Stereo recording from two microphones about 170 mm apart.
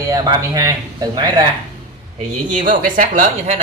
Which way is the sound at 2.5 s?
50° right (ahead or behind).